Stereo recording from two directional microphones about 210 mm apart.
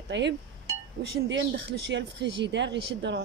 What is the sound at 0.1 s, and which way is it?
Speech, 55° right (ahead or behind).